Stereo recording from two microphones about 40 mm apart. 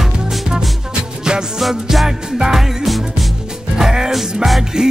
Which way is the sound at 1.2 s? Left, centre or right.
Centre.